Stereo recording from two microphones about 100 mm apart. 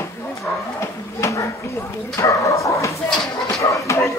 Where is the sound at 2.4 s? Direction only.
30° left (ahead or behind).